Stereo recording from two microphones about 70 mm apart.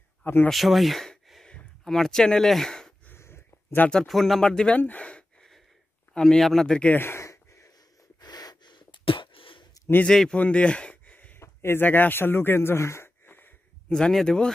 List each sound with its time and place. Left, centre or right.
0.2 s speech: left
0.5 s speech: centre
3.1 s dog: left
4.1 s speech: centre
4.7 s gasp: left
6.1 s speech: centre
6.8 s a sound: left
8.2 s gasp: left
10.0 s speech: centre
10.4 s a sound: centre
11.3 s speech: left
13.8 s speech: centre